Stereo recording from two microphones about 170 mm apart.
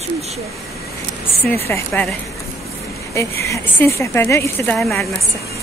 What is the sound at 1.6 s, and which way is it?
Speech, 10° left (ahead or behind).